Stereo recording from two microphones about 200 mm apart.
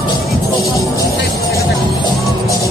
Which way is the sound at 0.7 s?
15° left (ahead or behind).